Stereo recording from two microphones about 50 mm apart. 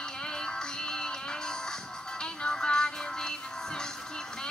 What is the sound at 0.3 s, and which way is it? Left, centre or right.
Music, centre.